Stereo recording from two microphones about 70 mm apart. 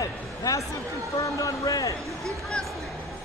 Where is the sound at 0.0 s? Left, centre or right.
Left.